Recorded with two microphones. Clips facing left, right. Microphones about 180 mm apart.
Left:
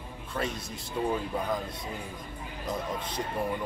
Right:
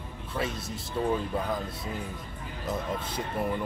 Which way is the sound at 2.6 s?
10° right (ahead or behind).